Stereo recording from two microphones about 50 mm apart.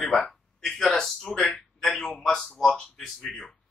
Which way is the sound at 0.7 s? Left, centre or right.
Centre.